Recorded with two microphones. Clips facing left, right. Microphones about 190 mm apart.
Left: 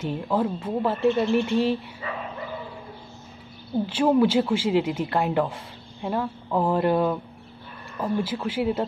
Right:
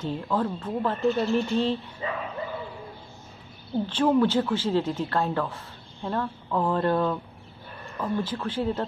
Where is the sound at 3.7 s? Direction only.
10° left (ahead or behind).